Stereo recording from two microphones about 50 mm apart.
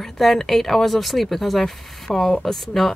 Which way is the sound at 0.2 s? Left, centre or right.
Centre.